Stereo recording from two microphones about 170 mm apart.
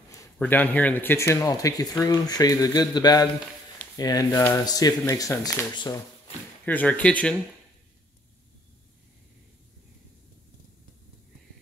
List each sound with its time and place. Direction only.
0.1 s speech: 15° left (ahead or behind)